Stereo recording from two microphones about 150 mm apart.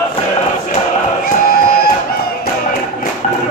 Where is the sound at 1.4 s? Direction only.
75° left (ahead or behind).